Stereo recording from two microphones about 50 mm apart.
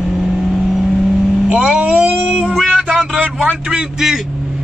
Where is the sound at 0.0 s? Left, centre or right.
Centre.